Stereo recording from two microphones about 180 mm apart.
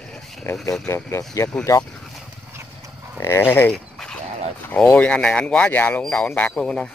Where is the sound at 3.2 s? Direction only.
15° left (ahead or behind).